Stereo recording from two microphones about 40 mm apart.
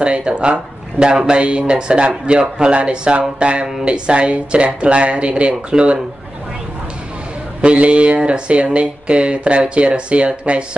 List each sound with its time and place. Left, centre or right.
0.0 s speech: right
7.6 s speech: right